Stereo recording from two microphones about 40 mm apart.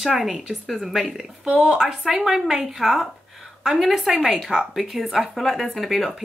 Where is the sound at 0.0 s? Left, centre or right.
Centre.